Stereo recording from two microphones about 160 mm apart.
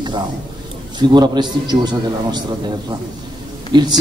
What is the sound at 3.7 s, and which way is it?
Speech, 25° right (ahead or behind).